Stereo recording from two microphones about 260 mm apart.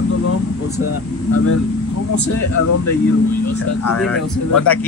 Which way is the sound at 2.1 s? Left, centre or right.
Left.